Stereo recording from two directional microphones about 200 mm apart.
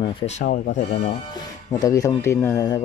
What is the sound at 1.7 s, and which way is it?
Speech, 15° left (ahead or behind).